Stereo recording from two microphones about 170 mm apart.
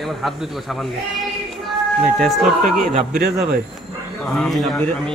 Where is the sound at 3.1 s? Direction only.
70° right (ahead or behind).